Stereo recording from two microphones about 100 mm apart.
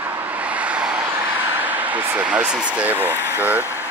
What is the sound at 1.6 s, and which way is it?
Speech, 15° right (ahead or behind).